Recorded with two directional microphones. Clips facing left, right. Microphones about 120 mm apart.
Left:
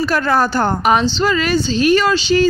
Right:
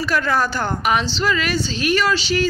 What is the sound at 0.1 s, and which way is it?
A woman's voice, 35° left (ahead or behind).